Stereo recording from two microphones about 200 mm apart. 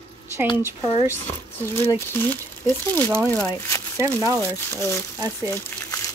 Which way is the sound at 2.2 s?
10° left (ahead or behind).